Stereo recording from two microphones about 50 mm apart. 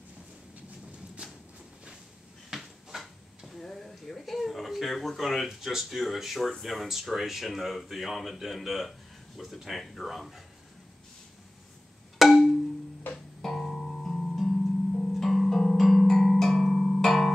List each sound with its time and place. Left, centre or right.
1.2 s walk: right
2.5 s a sound: centre
6.6 s speech: centre
12.2 s music: centre